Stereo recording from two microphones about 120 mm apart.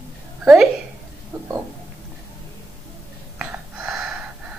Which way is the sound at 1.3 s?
25° right (ahead or behind).